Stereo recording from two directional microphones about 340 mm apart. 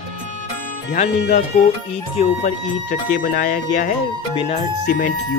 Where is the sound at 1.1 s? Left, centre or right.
Left.